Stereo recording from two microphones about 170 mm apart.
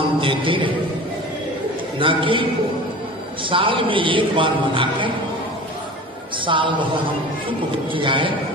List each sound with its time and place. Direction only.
0.2 s speech: 30° right (ahead or behind)
2.0 s speech: 30° right (ahead or behind)
3.4 s a man's voice: 30° right (ahead or behind)
6.3 s speech: 30° right (ahead or behind)